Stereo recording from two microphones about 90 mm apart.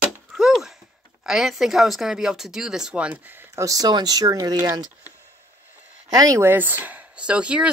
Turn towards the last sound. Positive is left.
turn(degrees=-10)  # may be behind; listen again after turning